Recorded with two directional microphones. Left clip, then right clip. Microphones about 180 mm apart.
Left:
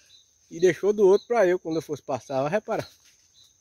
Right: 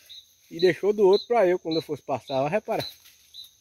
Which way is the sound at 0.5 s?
10° left (ahead or behind).